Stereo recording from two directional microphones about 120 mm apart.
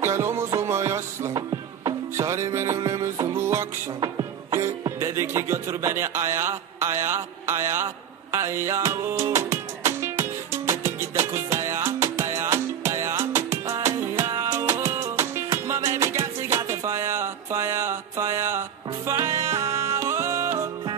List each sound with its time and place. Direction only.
0.0 s music: 20° right (ahead or behind)
1.3 s music: 35° right (ahead or behind)
2.1 s music: 25° right (ahead or behind)
4.0 s music: 35° right (ahead or behind)